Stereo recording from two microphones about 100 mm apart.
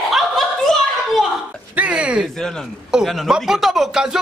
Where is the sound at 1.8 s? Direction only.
10° right (ahead or behind).